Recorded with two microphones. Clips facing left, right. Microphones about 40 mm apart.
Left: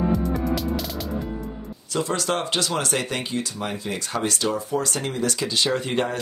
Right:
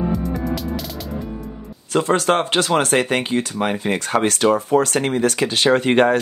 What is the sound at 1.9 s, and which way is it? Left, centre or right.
Speech, right.